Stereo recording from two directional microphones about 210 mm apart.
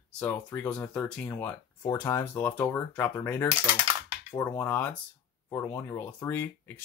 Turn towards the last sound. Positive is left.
turn(degrees=10)  # may be behind; listen again after turning